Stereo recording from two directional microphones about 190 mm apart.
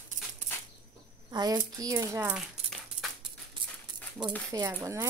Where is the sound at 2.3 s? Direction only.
Centre (ahead or behind).